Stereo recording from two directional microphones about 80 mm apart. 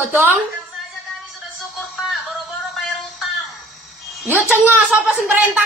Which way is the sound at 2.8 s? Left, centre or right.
Centre.